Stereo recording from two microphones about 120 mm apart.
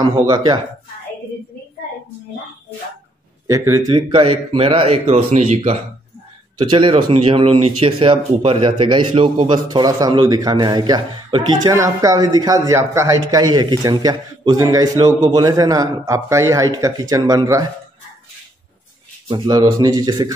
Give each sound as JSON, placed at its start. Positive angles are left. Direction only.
{"t": 0.0, "sound": "a man's voice", "side_deg": -35}
{"t": 3.4, "sound": "speech", "side_deg": -30}
{"t": 3.9, "sound": "a man's voice", "side_deg": -45}
{"t": 6.6, "sound": "a man's voice", "side_deg": -45}
{"t": 19.2, "sound": "a man's voice", "side_deg": -40}